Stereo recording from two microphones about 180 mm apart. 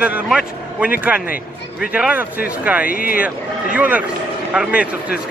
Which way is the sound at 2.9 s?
50° left (ahead or behind).